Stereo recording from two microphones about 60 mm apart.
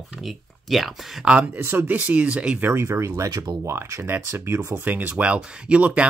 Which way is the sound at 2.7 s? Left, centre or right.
Right.